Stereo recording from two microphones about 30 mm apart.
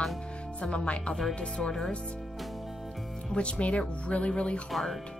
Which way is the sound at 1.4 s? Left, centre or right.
Left.